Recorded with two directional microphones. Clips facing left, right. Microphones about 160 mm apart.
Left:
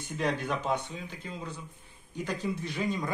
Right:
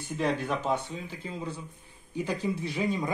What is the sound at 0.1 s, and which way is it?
Speech, 5° right (ahead or behind).